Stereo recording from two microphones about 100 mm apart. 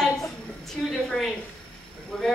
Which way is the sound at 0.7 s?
Centre (ahead or behind).